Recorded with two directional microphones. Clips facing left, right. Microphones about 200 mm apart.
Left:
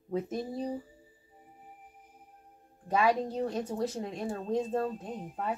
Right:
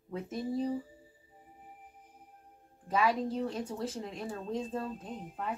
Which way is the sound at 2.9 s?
45° left (ahead or behind).